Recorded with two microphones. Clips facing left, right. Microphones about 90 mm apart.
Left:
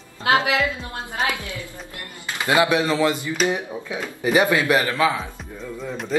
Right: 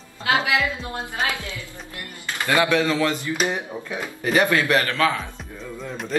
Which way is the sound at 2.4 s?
15° left (ahead or behind).